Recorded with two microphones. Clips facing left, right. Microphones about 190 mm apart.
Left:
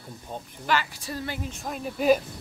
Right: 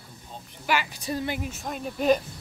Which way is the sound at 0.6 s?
15° right (ahead or behind).